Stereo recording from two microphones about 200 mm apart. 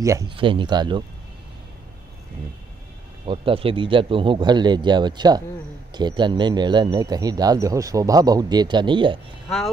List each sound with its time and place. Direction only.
0.0 s speech: 15° right (ahead or behind)
3.3 s speech: 25° right (ahead or behind)